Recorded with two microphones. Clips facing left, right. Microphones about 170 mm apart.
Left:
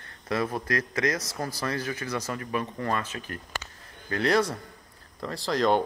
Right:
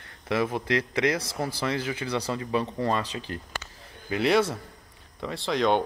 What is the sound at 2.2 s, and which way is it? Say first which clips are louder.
Speech: right 3 dB; 25° right (ahead or behind).